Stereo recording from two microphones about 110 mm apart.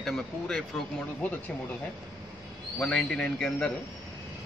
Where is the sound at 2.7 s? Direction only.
10° left (ahead or behind).